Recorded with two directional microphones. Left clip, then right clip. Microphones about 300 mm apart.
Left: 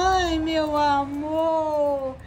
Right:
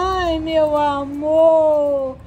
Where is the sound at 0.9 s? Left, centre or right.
Left.